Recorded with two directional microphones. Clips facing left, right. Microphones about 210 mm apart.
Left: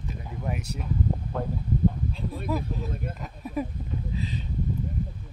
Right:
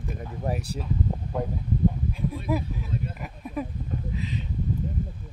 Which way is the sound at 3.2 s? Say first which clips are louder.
Left 1 dB; centre (ahead or behind).